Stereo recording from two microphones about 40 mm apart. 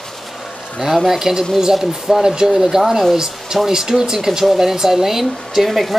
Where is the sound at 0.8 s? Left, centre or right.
Centre.